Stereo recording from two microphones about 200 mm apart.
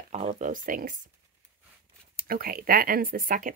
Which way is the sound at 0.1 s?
35° right (ahead or behind).